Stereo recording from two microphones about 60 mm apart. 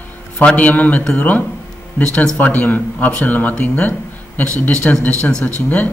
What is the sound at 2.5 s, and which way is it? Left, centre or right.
A man's voice, left.